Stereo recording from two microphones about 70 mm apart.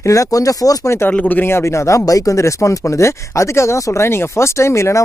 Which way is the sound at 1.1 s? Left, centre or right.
Left.